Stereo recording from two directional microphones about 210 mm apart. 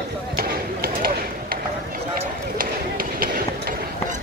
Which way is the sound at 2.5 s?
45° right (ahead or behind).